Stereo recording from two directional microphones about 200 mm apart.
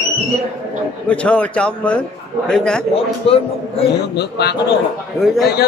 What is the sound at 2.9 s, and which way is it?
Speech, 30° left (ahead or behind).